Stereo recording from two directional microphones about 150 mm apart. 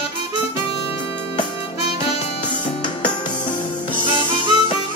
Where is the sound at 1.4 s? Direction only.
35° left (ahead or behind).